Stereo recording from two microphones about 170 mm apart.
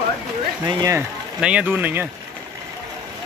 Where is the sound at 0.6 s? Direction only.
20° right (ahead or behind).